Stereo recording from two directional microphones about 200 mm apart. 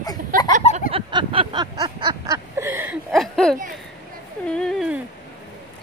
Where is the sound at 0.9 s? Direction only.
25° right (ahead or behind).